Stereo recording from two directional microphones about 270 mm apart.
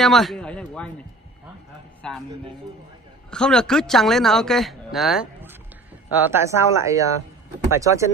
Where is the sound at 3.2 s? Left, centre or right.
Centre.